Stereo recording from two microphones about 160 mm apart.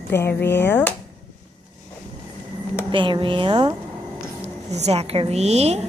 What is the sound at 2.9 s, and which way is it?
Speech, 30° right (ahead or behind).